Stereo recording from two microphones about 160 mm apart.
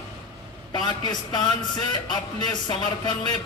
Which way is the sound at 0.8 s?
25° left (ahead or behind).